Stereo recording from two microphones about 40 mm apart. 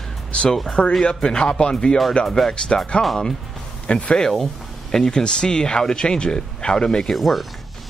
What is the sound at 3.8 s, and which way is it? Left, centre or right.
Speech, left.